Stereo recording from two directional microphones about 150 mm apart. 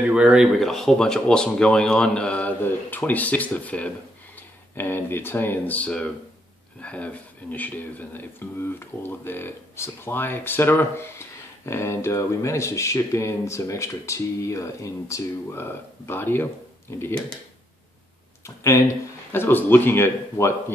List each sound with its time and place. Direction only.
0.1 s speech: 5° right (ahead or behind); by 17.0 s 15° left (ahead or behind)
18.6 s speech: 20° left (ahead or behind)